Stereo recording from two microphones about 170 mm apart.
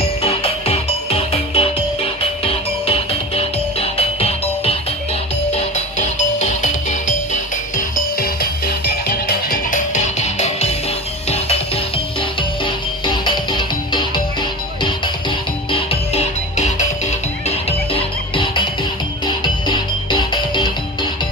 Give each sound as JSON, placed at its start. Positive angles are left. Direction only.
{"t": 0.0, "sound": "music", "side_deg": 35}
{"t": 7.7, "sound": "music", "side_deg": 60}
{"t": 15.7, "sound": "music", "side_deg": 35}